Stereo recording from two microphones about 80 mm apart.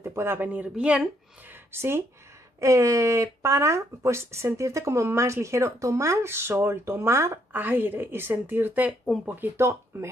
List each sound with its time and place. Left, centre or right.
0.0 s a woman's voice: right; by 1.0 s centre
1.5 s speech: right
7.5 s a woman's voice: right